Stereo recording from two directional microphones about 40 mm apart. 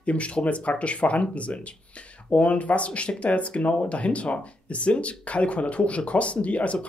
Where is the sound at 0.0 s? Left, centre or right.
Left.